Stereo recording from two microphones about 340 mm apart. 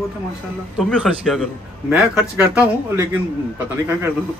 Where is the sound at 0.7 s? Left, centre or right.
Centre.